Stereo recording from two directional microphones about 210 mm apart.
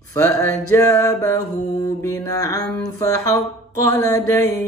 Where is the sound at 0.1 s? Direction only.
10° left (ahead or behind).